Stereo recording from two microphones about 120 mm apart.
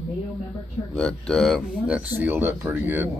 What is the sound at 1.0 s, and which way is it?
Speech, 5° left (ahead or behind).